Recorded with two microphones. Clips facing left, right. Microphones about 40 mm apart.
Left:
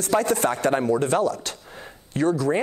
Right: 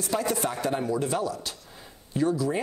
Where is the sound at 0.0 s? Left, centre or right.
Left.